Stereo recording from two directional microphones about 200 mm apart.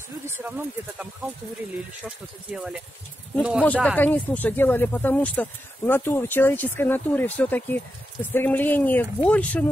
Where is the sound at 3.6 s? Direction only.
5° left (ahead or behind).